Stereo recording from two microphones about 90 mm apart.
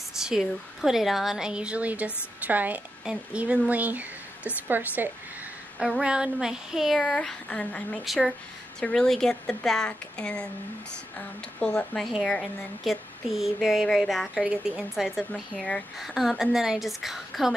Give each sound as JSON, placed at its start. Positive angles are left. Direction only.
{"t": 0.2, "sound": "a woman's voice", "side_deg": -5}
{"t": 5.8, "sound": "speech", "side_deg": -5}
{"t": 8.0, "sound": "a woman's voice", "side_deg": 0}
{"t": 14.4, "sound": "speech", "side_deg": -10}